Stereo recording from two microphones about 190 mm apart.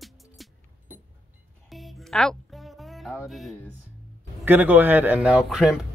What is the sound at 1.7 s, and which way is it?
Music, centre (ahead or behind).